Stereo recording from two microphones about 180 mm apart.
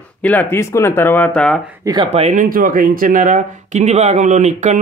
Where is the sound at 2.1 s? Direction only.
40° right (ahead or behind).